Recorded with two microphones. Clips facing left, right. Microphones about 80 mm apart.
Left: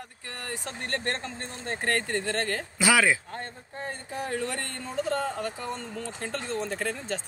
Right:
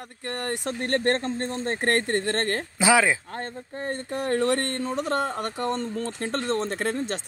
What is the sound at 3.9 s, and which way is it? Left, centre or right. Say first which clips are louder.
Speech: right 7 dB; right.